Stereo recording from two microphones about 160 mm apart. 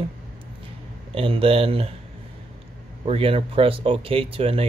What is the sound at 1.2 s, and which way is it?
Speech, 35° right (ahead or behind).